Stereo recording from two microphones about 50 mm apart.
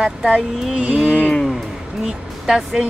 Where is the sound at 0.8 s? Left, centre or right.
Centre.